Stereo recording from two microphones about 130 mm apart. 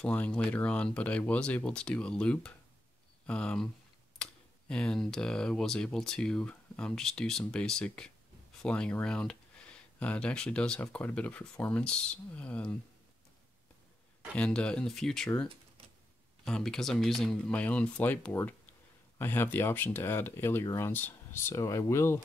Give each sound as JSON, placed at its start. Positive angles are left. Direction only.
{"t": 0.0, "sound": "speech", "side_deg": 10}
{"t": 14.3, "sound": "speech", "side_deg": 10}
{"t": 16.4, "sound": "speech", "side_deg": 5}